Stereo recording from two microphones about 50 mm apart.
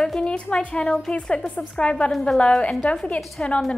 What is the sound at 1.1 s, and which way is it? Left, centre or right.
A woman's voice, left.